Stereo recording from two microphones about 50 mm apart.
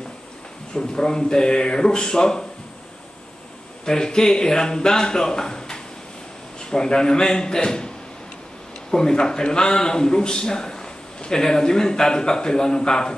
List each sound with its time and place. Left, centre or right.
0.7 s a man's voice: centre
3.8 s a man's voice: centre
8.9 s a man's voice: centre